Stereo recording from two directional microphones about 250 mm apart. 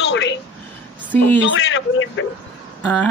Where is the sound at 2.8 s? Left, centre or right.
Centre.